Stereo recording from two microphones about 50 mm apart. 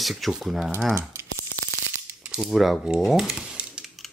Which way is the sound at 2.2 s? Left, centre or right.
Centre.